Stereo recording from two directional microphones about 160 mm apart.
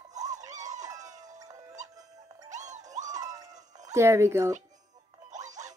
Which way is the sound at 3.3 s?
25° right (ahead or behind).